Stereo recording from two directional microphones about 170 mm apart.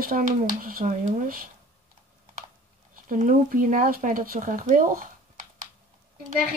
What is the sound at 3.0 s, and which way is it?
Speech, 50° right (ahead or behind).